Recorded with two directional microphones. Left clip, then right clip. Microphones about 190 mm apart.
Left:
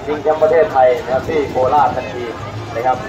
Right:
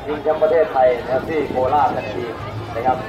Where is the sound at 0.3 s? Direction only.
50° left (ahead or behind).